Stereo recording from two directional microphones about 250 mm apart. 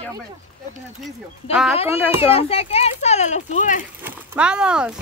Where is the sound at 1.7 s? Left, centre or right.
Left.